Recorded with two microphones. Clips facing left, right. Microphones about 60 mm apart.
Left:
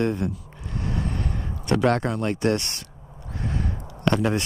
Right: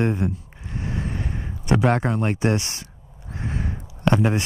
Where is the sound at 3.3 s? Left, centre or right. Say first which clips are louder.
Even; right.